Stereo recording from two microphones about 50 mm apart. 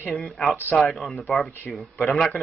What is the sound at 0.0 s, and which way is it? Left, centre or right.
Speech, centre.